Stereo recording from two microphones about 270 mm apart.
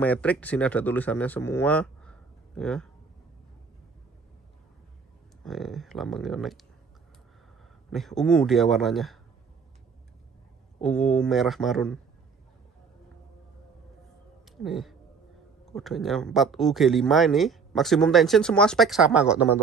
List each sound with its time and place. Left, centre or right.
0.0 s speech: centre
5.4 s speech: centre
7.9 s speech: centre
10.8 s speech: centre
14.6 s speech: centre